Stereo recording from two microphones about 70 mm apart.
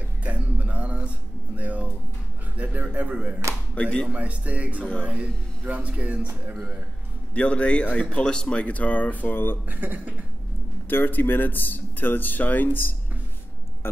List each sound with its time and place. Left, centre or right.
0.2 s a sound: right
2.5 s speech: right
3.8 s speech: centre
4.1 s a man's voice: centre
7.3 s speech: centre
9.7 s speech: right
10.9 s speech: left